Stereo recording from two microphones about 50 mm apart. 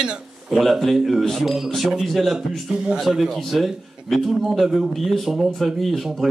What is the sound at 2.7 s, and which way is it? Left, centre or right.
Speech, centre.